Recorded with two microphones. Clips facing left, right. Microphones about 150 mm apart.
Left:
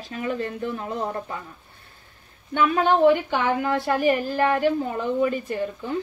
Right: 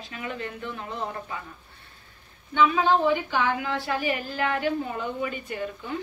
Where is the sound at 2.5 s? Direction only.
50° left (ahead or behind).